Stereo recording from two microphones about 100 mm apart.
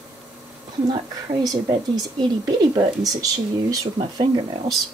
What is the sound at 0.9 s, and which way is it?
A woman's voice, 45° right (ahead or behind).